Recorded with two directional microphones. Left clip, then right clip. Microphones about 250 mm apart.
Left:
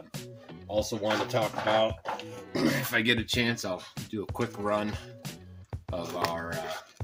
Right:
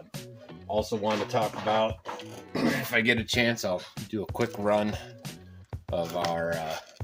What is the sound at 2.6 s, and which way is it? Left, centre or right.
Speech, right.